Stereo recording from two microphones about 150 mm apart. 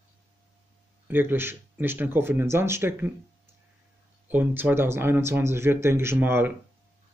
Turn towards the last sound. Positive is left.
turn(degrees=-15)  # may be behind; listen again after turning